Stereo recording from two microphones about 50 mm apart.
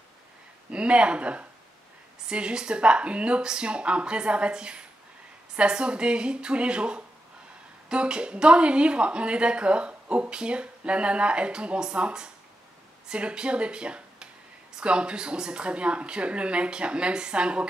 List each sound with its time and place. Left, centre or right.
0.7 s a woman's voice: right